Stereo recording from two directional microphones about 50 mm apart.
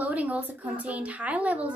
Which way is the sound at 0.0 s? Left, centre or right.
Right.